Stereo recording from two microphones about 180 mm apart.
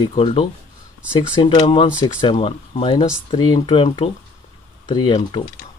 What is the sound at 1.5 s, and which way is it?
Speech, 30° left (ahead or behind).